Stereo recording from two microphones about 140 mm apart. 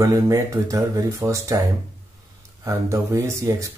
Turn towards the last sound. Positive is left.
turn(degrees=-20)  # may be behind; listen again after turning